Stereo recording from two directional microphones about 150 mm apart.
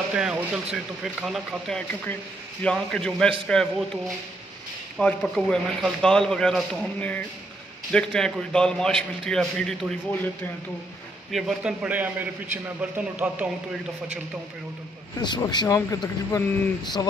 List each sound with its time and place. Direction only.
0.1 s a man's voice: 10° right (ahead or behind)
11.3 s a man's voice: 5° right (ahead or behind)
15.2 s speech: 30° left (ahead or behind)